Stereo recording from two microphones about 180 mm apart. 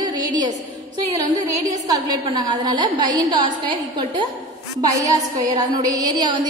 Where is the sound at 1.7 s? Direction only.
20° right (ahead or behind).